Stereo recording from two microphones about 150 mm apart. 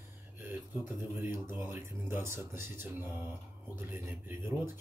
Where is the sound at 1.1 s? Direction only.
15° right (ahead or behind).